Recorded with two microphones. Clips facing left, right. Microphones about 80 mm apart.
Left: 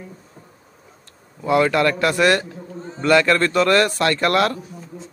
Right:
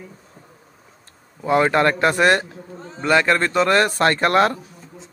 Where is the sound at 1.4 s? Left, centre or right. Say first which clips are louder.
Even; right.